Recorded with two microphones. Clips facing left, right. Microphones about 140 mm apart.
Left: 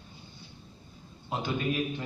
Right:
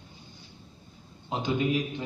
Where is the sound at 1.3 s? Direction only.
20° right (ahead or behind).